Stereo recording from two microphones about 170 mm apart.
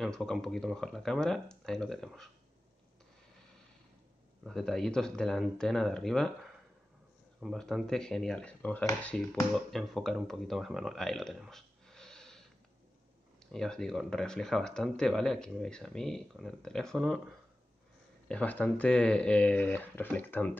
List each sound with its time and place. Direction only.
0.0 s speech: centre (ahead or behind)
4.4 s speech: centre (ahead or behind)
7.3 s speech: centre (ahead or behind)
13.5 s speech: 5° left (ahead or behind)
18.3 s speech: 10° left (ahead or behind)